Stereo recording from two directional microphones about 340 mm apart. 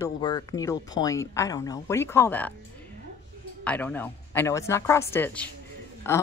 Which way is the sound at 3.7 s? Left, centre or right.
Centre.